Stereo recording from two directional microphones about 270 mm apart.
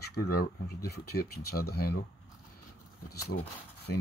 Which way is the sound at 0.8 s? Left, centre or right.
Left.